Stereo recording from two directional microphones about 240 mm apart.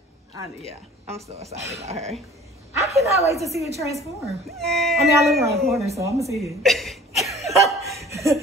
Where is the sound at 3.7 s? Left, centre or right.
Centre.